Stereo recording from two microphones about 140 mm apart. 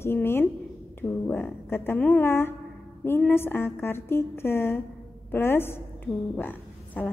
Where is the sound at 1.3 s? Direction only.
10° left (ahead or behind).